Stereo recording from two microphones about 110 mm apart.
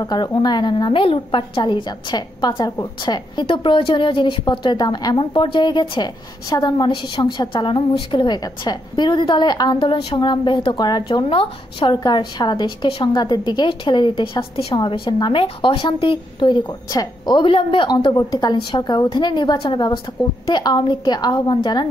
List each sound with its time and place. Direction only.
0.0 s a woman's voice: 40° left (ahead or behind)
1.0 s a woman's voice: 55° left (ahead or behind)